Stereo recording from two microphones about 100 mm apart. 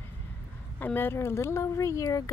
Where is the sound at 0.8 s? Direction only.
20° left (ahead or behind).